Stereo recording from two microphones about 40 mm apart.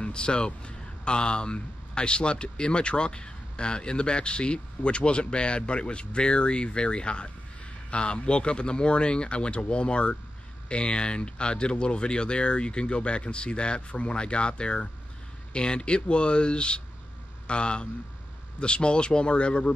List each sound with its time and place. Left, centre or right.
0.0 s speech: left